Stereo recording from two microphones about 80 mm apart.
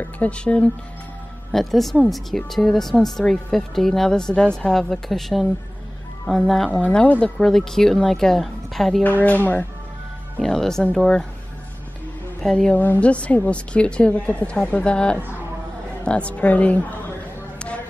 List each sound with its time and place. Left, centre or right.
0.0 s speech: centre
1.5 s a woman's voice: centre
6.7 s a woman's voice: centre
9.2 s a woman's voice: centre
10.4 s speech: centre
12.4 s speech: centre
12.7 s a woman's voice: left